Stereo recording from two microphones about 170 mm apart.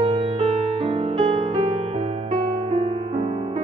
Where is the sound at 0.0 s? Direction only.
35° right (ahead or behind).